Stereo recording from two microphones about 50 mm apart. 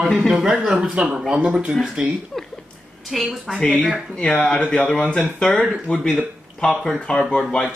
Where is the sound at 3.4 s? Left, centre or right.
Centre.